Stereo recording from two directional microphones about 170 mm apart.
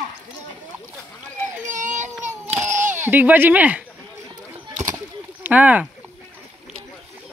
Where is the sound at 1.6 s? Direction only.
50° right (ahead or behind).